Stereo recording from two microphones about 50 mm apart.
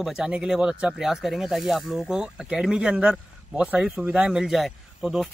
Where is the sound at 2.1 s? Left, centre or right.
Centre.